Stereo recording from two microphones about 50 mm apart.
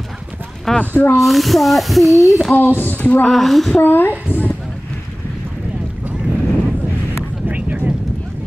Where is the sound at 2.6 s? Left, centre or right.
Left.